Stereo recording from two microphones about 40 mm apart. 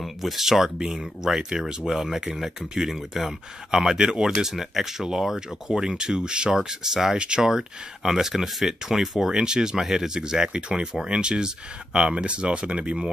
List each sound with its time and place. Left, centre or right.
0.0 s speech: centre; by 13.0 s right